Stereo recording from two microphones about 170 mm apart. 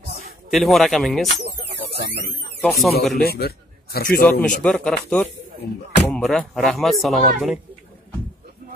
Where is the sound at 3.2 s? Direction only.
65° left (ahead or behind).